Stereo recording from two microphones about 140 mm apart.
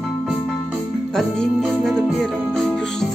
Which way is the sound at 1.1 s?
5° left (ahead or behind).